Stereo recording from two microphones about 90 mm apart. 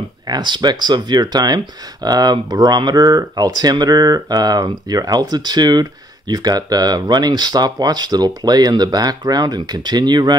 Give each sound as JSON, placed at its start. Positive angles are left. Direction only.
{"t": 0.3, "sound": "speech", "side_deg": -55}